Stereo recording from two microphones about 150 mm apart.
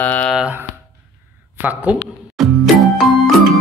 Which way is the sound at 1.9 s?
10° right (ahead or behind).